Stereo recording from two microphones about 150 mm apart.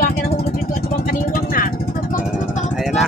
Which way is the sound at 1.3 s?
70° left (ahead or behind).